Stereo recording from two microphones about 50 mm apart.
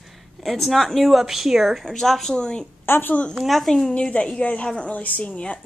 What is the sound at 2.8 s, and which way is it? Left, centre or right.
Speech, left.